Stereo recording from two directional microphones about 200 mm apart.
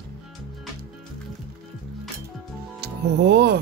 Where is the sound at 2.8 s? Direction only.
55° right (ahead or behind).